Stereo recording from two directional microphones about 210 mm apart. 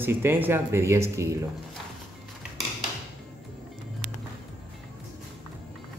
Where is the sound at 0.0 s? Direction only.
10° right (ahead or behind).